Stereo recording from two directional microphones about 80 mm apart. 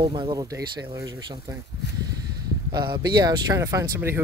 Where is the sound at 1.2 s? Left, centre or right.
Right.